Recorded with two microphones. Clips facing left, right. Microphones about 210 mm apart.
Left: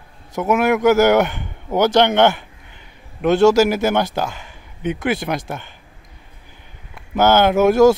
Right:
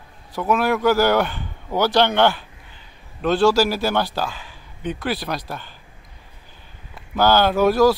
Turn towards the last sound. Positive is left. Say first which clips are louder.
# left 4 dB
turn(degrees=20)  # may be behind; listen again after turning